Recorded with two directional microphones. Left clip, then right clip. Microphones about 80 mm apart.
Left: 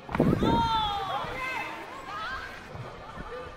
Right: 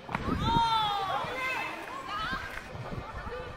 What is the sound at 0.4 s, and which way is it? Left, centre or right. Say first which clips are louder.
Run: right 3 dB; right.